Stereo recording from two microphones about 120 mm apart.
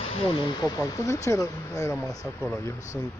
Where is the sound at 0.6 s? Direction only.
30° left (ahead or behind).